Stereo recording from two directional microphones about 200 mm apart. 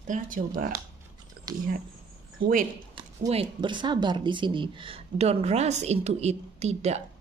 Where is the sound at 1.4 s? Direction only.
45° right (ahead or behind).